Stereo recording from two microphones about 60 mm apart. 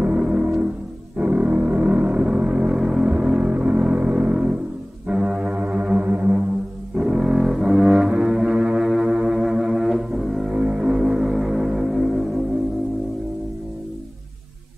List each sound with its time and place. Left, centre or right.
0.0 s music: centre
1.1 s a sound: right
5.0 s foghorn: centre
6.0 s music: right
7.0 s music: centre
10.5 s music: centre